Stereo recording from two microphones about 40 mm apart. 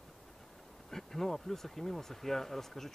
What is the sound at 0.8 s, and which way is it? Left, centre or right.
Bee, centre.